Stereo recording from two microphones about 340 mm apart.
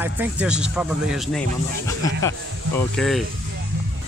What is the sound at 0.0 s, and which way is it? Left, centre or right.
Speech, centre.